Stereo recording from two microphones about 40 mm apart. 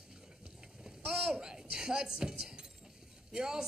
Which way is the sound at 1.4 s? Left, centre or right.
Centre.